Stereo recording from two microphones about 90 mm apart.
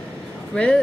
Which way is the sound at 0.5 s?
10° left (ahead or behind).